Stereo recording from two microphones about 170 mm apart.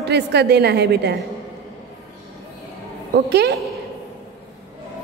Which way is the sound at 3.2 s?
75° right (ahead or behind).